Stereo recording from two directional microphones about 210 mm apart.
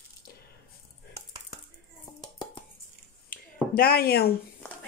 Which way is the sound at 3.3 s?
45° left (ahead or behind).